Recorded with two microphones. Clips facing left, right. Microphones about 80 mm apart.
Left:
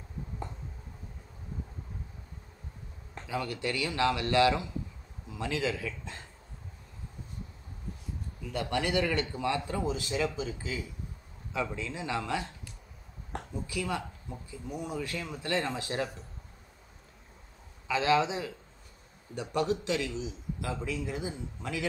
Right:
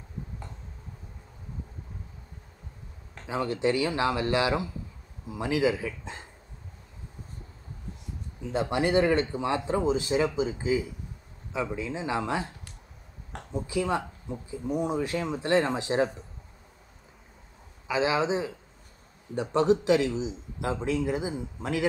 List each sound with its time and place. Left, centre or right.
3.3 s a man's voice: right
8.4 s a man's voice: right
13.6 s a man's voice: right
17.8 s a man's voice: centre